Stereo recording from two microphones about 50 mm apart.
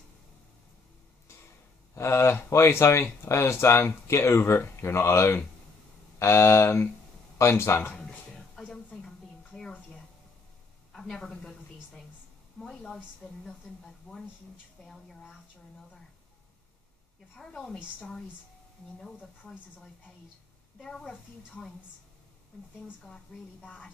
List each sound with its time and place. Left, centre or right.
2.0 s speech: left
8.0 s a sound: centre
10.9 s a sound: centre
12.5 s a woman's voice: centre
17.5 s a woman's voice: left
18.9 s a woman's voice: centre
20.8 s a woman's voice: centre
23.0 s a woman's voice: centre